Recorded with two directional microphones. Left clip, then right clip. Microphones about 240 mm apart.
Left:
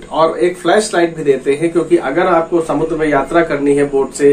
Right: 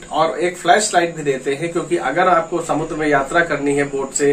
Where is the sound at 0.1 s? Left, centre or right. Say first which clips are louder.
Left 5 dB; centre.